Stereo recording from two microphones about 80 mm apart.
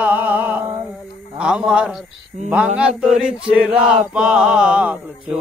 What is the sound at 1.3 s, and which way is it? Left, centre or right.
Speech, centre.